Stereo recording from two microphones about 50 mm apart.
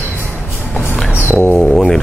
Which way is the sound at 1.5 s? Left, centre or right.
Centre.